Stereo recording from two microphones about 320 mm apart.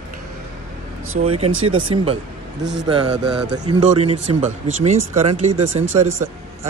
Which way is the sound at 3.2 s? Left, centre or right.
Centre.